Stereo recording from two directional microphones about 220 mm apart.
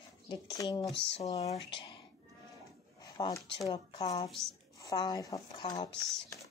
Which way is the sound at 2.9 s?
15° left (ahead or behind).